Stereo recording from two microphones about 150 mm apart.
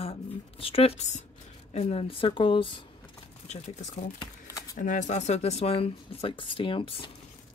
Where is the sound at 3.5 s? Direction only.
50° left (ahead or behind).